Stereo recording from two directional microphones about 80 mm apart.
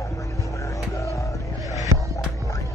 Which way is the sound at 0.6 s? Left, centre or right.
Left.